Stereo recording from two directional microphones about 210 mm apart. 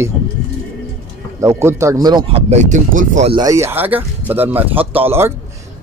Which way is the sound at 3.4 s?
15° right (ahead or behind).